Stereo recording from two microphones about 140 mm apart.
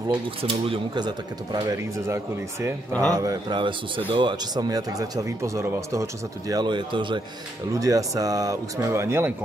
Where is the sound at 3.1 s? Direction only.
25° right (ahead or behind).